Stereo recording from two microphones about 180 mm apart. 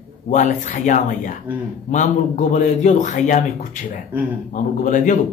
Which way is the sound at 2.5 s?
40° left (ahead or behind).